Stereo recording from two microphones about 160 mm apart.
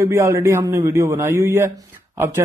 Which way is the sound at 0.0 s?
20° right (ahead or behind).